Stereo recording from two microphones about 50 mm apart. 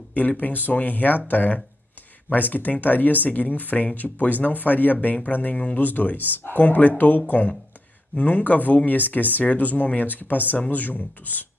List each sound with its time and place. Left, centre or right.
0.1 s speech: left